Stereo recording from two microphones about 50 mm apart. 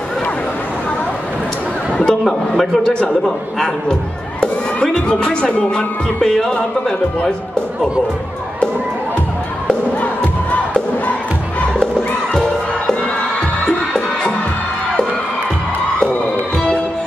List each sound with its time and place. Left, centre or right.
2.0 s a man's voice: centre
5.0 s speech: left
6.2 s a man's voice: centre
9.9 s crowd: left
11.7 s crowd: left
13.7 s music: centre